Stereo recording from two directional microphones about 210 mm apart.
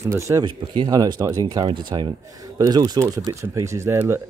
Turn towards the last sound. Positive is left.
turn(degrees=-10)  # may be behind; listen again after turning